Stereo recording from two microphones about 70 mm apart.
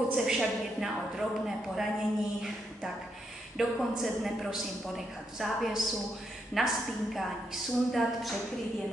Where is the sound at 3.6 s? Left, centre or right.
Centre.